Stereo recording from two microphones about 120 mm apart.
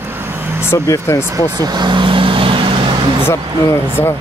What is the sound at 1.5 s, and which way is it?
Vehicle, 35° right (ahead or behind).